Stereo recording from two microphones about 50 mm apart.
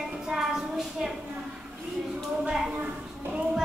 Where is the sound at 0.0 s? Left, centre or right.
Centre.